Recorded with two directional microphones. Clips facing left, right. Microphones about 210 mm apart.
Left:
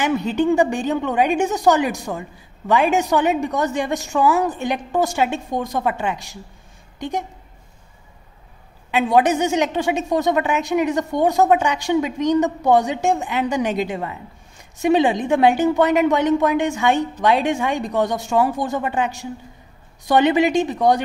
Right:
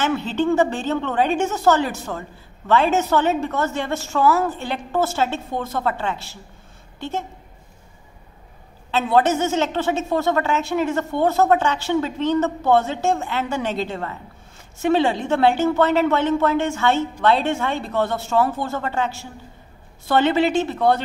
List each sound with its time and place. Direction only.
0.0 s a woman's voice: 15° left (ahead or behind)
8.9 s a woman's voice: 15° left (ahead or behind)